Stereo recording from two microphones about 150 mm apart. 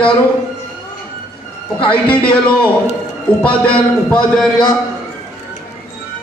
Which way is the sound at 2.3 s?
10° left (ahead or behind).